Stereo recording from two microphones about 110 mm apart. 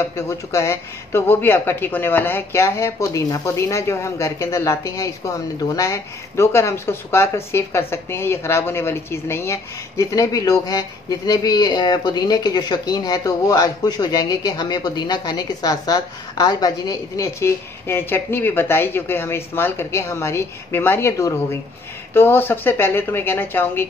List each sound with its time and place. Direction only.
0.0 s speech: 30° left (ahead or behind)